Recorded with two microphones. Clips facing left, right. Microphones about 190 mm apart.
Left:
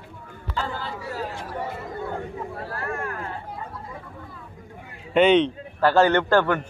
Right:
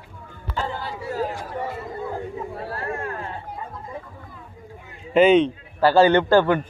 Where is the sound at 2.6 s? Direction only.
25° right (ahead or behind).